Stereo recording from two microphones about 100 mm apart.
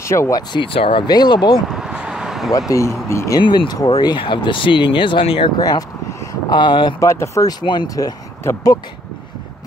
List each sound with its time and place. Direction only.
0.0 s speech: 30° left (ahead or behind)
0.4 s speech: 45° left (ahead or behind)
0.7 s speech: 60° left (ahead or behind)
1.0 s speech: 45° left (ahead or behind)
1.7 s vehicle: 5° right (ahead or behind)
2.7 s speech: 30° left (ahead or behind)
3.3 s speech: 50° left (ahead or behind)
4.0 s speech: 50° left (ahead or behind)
5.6 s speech: 40° left (ahead or behind)
7.0 s speech: 30° left (ahead or behind)
7.6 s speech: 45° left (ahead or behind)
8.5 s speech: 30° left (ahead or behind)